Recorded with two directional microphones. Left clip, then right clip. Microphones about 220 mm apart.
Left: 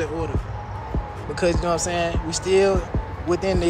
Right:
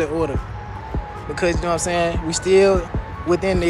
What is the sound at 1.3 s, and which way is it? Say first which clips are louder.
Speech: right 1 dB; 20° left (ahead or behind).